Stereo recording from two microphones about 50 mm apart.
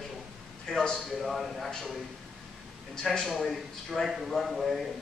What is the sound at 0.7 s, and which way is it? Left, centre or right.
A man's voice, centre.